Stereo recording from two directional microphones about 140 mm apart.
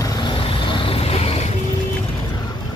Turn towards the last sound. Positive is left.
turn(degrees=45)  # may be behind; listen again after turning